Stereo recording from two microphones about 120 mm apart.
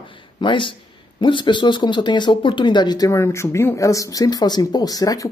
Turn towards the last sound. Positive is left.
turn(degrees=30)  # may be behind; listen again after turning